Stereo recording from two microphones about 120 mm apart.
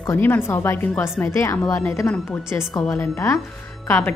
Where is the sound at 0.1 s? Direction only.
20° left (ahead or behind).